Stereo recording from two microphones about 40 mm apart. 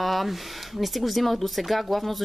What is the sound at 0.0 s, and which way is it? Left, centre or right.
Speech, centre.